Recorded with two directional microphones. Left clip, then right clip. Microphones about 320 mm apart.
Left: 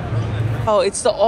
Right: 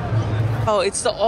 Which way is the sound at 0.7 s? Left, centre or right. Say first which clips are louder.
Left 3 dB; centre.